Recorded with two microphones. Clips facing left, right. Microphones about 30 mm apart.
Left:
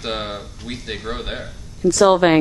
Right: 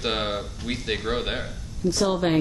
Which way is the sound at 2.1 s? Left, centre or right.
Left.